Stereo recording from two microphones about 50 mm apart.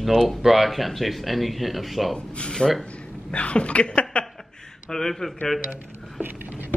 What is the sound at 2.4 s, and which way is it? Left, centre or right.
Speech, centre.